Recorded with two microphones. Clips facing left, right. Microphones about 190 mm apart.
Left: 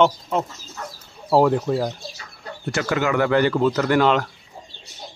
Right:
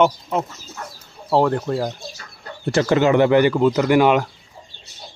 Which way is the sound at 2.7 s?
30° right (ahead or behind).